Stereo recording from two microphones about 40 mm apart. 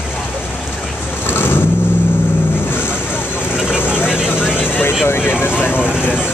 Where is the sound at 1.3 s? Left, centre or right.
Left.